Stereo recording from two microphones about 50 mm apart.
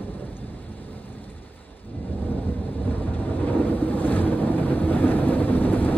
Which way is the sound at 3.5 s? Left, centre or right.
Left.